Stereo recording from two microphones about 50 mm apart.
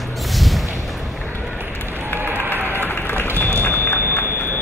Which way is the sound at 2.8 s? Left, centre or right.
Left.